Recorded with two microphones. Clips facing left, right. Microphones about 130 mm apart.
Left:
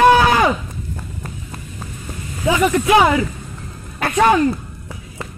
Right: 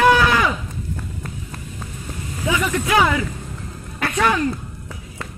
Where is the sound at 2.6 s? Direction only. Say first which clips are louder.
Left 5 dB; 20° left (ahead or behind).